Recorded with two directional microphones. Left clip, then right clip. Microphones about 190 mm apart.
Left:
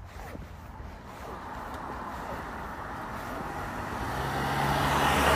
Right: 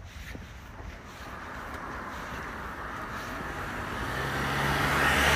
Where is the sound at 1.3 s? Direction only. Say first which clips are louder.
Even; 25° left (ahead or behind).